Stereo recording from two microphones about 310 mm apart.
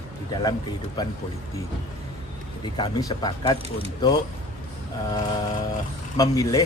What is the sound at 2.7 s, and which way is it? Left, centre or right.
Speech, centre.